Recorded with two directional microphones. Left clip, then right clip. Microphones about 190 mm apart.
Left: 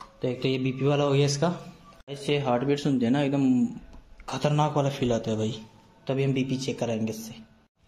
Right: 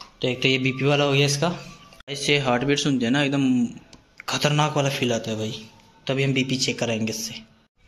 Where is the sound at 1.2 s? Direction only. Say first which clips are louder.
Right 3 dB; 15° left (ahead or behind).